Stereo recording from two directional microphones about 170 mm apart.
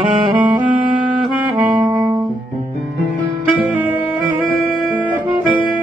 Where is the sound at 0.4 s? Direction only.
25° right (ahead or behind).